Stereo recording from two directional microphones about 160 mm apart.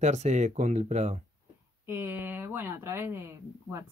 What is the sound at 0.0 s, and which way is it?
Speech, 45° right (ahead or behind).